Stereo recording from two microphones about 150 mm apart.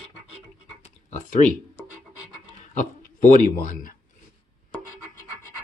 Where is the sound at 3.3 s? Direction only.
60° left (ahead or behind).